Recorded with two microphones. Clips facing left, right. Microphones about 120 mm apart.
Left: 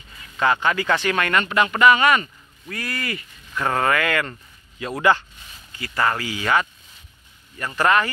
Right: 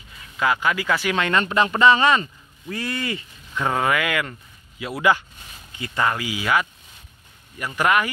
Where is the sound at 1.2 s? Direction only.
25° right (ahead or behind).